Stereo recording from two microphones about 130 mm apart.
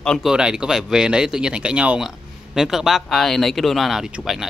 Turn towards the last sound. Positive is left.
turn(degrees=0)  # may be behind; listen again after turning